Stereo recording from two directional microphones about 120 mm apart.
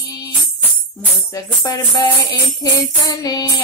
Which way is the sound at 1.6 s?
35° left (ahead or behind).